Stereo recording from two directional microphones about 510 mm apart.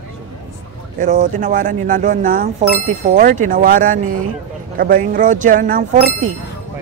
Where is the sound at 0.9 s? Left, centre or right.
Centre.